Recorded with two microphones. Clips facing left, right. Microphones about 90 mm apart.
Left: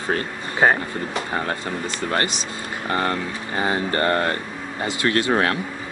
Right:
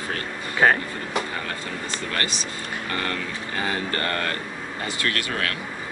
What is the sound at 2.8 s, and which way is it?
Speech, 25° left (ahead or behind).